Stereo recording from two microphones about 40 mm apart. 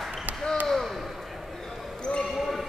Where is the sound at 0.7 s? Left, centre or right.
Centre.